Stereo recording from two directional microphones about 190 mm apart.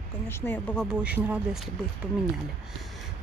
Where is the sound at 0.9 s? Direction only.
5° right (ahead or behind).